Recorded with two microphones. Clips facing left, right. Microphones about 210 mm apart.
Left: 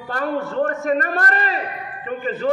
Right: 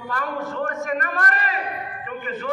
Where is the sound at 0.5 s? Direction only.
30° left (ahead or behind).